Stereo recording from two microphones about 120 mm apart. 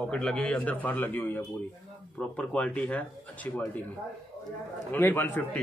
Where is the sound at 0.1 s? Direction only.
5° left (ahead or behind).